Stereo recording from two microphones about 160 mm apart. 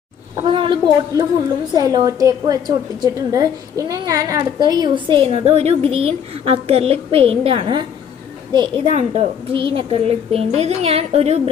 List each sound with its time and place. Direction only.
0.4 s a woman's voice: 30° right (ahead or behind)